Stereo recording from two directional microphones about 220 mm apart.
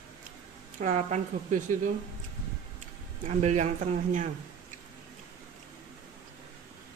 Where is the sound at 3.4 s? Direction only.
30° right (ahead or behind).